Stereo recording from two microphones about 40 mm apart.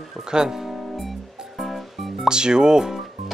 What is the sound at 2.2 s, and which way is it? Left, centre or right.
Speech, centre.